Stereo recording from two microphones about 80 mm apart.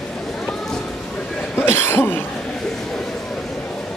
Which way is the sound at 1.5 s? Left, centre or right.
Left.